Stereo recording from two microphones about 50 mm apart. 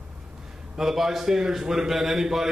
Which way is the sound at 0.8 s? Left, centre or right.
Centre.